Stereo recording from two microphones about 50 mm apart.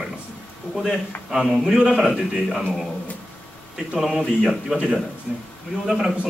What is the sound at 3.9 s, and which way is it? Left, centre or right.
Speech, centre.